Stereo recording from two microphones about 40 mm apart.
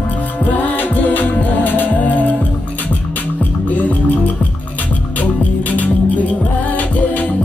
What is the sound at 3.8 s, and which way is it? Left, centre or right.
Music, left.